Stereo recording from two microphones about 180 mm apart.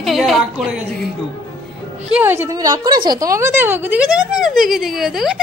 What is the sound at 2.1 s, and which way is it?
A woman's voice, 10° right (ahead or behind).